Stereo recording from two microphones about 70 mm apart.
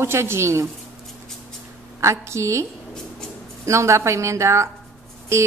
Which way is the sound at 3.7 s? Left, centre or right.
Right.